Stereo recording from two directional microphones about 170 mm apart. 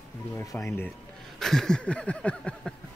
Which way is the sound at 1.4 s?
5° left (ahead or behind).